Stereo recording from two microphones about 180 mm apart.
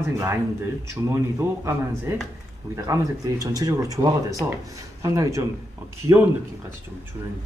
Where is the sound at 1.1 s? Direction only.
15° right (ahead or behind).